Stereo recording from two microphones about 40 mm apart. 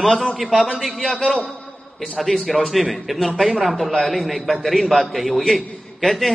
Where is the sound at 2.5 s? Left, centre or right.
Centre.